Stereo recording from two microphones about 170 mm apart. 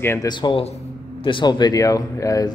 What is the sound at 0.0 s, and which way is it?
Speech, 15° left (ahead or behind).